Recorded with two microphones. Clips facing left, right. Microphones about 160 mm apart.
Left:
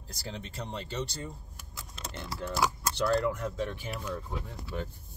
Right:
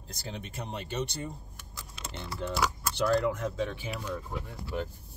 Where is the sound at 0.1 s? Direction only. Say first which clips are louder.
Even; 20° right (ahead or behind).